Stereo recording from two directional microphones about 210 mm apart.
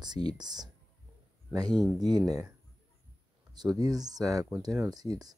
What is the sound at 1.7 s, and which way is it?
Speech, 5° left (ahead or behind).